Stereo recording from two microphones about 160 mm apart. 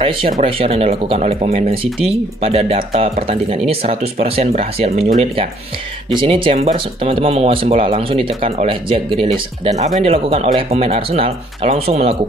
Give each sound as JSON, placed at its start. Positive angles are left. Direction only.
{"t": 0.3, "sound": "speech", "side_deg": -40}